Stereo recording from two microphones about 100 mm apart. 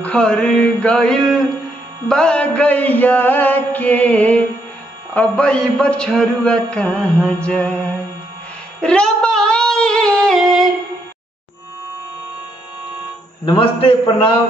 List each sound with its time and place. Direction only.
0.0 s music: 10° left (ahead or behind)
8.8 s a sound: 10° left (ahead or behind)
13.5 s a man's voice: 60° left (ahead or behind)